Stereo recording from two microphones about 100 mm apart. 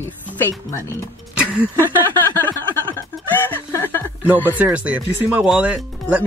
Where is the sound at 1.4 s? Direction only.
10° right (ahead or behind).